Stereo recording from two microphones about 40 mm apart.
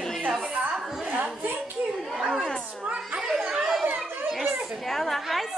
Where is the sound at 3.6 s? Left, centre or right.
Centre.